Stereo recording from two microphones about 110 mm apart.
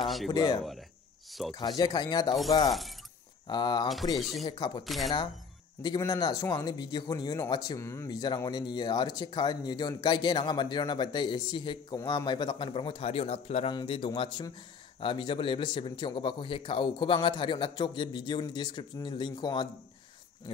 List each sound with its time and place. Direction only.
0.3 s speech: 35° left (ahead or behind)
3.4 s speech: 45° left (ahead or behind)
4.2 s speech: centre (ahead or behind)
4.5 s speech: 40° left (ahead or behind)
4.8 s speech: centre (ahead or behind)
5.8 s speech: 35° left (ahead or behind)
8.1 s speech: 40° left (ahead or behind); by 13.7 s 65° left (ahead or behind)
13.8 s speech: 55° left (ahead or behind)